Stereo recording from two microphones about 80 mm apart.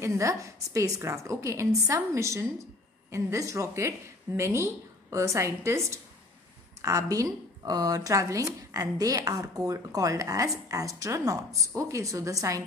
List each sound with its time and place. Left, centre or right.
0.0 s a woman's voice: right